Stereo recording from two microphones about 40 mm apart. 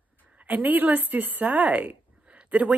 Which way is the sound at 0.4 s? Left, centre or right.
Right.